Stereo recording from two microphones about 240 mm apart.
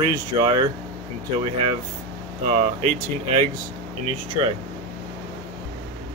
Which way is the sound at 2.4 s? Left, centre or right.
Right.